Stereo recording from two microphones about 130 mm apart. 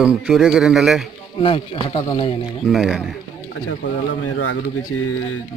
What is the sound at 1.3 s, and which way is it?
Speech, 45° left (ahead or behind).